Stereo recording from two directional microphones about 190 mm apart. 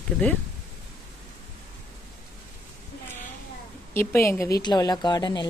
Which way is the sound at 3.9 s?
10° left (ahead or behind).